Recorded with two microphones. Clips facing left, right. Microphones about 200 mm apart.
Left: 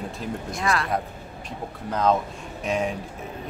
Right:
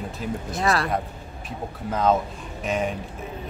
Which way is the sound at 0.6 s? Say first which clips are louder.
Right 3 dB; 35° right (ahead or behind).